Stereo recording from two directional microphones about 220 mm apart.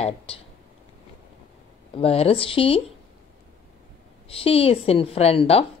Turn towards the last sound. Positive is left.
turn(degrees=25)  # may be behind; listen again after turning